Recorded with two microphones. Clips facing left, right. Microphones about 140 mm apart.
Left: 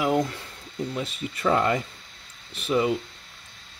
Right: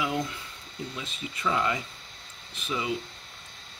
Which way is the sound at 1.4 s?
50° left (ahead or behind).